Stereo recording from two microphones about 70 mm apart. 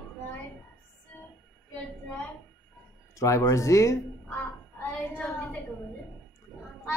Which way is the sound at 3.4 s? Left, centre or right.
Left.